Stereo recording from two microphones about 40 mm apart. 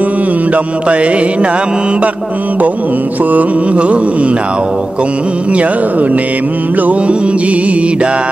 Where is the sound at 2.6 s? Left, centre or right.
Right.